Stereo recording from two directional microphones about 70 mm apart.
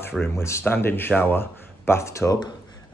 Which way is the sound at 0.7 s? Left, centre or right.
Left.